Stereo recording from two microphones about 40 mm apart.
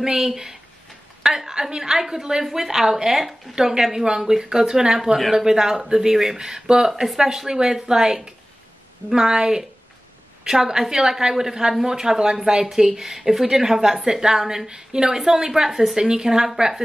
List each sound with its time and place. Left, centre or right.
0.0 s a woman's voice: centre